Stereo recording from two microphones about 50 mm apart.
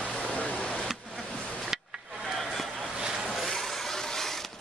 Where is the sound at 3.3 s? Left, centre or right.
Centre.